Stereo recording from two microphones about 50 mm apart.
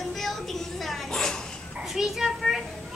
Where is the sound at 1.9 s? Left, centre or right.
Centre.